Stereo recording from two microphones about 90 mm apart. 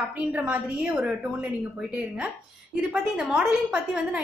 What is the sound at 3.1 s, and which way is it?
A woman's voice, 5° right (ahead or behind).